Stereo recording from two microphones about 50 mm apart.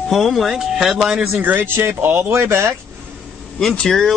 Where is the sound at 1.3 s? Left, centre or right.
Right.